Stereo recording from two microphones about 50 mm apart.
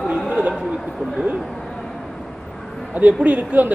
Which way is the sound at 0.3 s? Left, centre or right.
Right.